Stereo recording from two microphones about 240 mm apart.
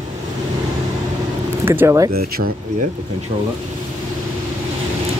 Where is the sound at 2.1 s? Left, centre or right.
Right.